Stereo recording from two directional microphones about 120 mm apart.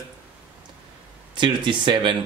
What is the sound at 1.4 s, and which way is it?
Speech, 40° right (ahead or behind).